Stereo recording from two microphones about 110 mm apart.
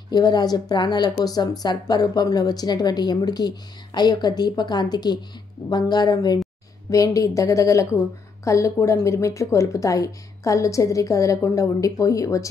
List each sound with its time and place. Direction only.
0.1 s a woman's voice: 40° left (ahead or behind)